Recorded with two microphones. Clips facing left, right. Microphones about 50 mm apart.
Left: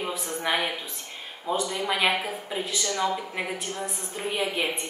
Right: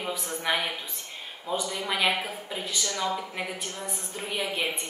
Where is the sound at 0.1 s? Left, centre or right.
Centre.